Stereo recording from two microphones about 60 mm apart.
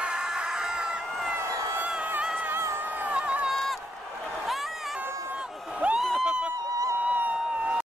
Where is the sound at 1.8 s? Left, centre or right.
Centre.